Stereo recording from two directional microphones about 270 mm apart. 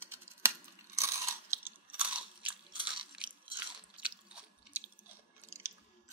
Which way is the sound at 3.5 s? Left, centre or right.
Centre.